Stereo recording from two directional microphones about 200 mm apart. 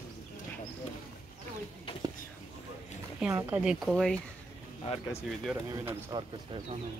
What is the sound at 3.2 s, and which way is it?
Speech, 10° right (ahead or behind).